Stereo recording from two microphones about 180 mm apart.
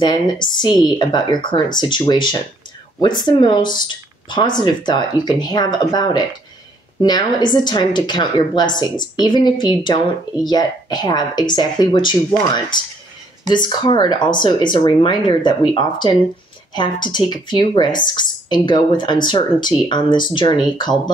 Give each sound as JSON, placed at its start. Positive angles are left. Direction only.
{"t": 0.0, "sound": "a woman's voice", "side_deg": 25}